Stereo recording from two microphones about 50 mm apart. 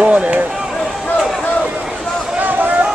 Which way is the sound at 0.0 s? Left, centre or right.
Right.